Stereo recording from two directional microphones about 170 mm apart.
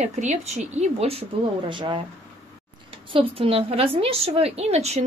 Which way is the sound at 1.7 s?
30° right (ahead or behind).